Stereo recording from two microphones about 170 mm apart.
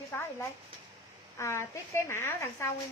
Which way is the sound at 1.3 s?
15° left (ahead or behind).